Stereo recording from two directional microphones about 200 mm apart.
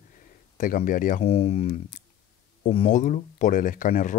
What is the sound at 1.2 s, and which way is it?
Speech, 30° left (ahead or behind).